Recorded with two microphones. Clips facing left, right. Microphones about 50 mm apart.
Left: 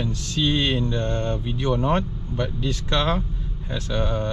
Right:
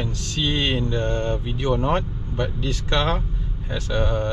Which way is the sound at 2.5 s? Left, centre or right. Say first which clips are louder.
Even; right.